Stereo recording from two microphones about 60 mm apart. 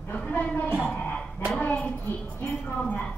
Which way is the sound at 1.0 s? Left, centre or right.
Centre.